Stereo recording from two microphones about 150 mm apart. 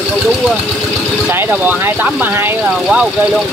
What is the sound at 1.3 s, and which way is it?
Speech, 15° right (ahead or behind).